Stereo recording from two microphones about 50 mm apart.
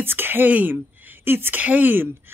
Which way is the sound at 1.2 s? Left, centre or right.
Right.